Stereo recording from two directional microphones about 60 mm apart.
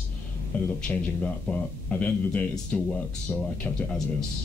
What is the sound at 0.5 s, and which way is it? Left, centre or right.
A man's voice, left.